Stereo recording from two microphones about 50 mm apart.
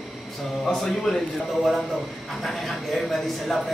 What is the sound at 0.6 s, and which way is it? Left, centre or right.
Speech, centre.